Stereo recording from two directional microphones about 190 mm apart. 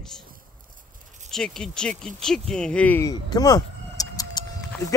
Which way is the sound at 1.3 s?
5° left (ahead or behind).